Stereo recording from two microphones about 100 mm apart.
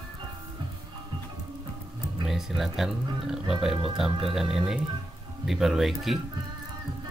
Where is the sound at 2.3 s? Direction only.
Centre (ahead or behind).